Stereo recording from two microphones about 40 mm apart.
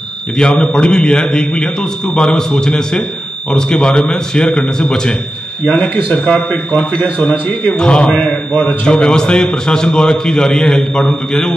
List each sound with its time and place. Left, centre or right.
0.4 s a man's voice: left
6.1 s a man's voice: left
8.1 s a man's voice: left
8.8 s a man's voice: centre